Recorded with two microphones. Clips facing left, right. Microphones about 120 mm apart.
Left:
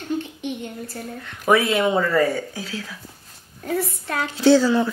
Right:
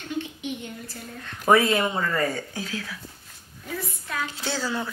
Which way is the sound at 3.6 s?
65° left (ahead or behind).